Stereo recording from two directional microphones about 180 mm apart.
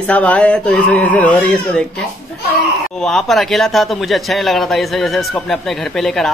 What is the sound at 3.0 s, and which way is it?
Speech, 5° left (ahead or behind).